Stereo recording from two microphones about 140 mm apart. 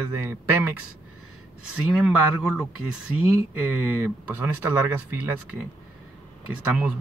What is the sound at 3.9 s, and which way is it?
Speech, 15° right (ahead or behind).